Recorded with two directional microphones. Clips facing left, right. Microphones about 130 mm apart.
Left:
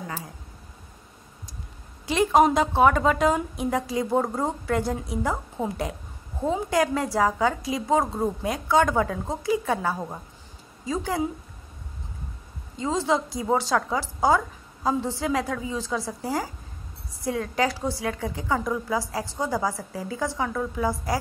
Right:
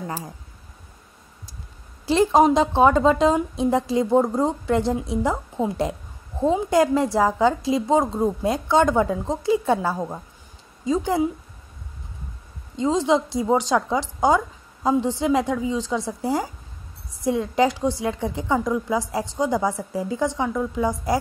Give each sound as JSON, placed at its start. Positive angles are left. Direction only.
{"t": 2.0, "sound": "a woman's voice", "side_deg": -30}
{"t": 10.9, "sound": "a woman's voice", "side_deg": -25}
{"t": 12.7, "sound": "a woman's voice", "side_deg": -20}